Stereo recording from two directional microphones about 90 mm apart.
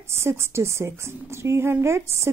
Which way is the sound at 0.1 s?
30° right (ahead or behind).